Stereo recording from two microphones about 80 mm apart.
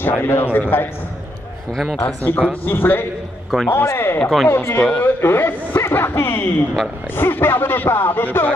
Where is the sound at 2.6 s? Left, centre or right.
Left.